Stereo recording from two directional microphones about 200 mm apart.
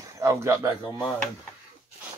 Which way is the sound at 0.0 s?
15° right (ahead or behind).